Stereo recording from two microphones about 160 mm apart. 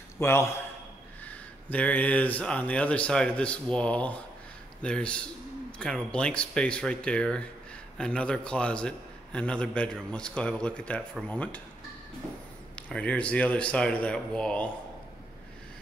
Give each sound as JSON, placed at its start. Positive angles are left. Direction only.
{"t": 0.2, "sound": "a man's voice", "side_deg": 15}
{"t": 12.7, "sound": "a man's voice", "side_deg": 10}